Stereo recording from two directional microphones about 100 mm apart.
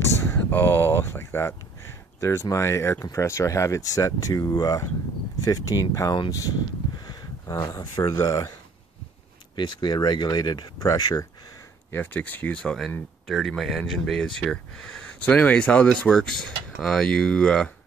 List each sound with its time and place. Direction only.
0.2 s a sound: 25° left (ahead or behind)
2.1 s speech: 30° left (ahead or behind)
9.6 s speech: 50° left (ahead or behind)
11.9 s speech: 20° left (ahead or behind)